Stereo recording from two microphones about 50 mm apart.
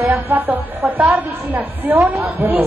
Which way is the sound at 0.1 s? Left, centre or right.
Right.